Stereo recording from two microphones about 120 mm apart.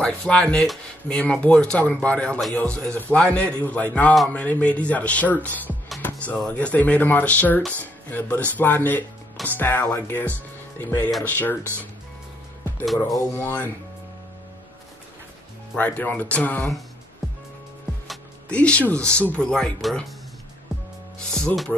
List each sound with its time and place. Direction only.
0.0 s speech: 10° left (ahead or behind)
13.0 s speech: 25° left (ahead or behind)
15.7 s speech: 10° left (ahead or behind)
18.5 s speech: 10° left (ahead or behind)